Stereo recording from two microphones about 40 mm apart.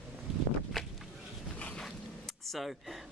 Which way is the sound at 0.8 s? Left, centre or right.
Centre.